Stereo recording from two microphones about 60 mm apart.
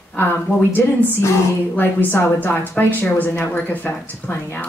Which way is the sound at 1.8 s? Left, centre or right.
Left.